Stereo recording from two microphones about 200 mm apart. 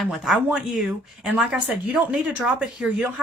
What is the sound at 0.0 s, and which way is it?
A woman's voice, centre (ahead or behind).